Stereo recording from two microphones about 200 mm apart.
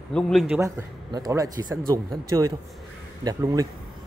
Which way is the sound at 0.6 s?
15° right (ahead or behind).